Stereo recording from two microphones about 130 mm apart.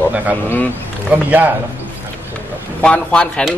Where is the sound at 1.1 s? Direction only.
15° right (ahead or behind).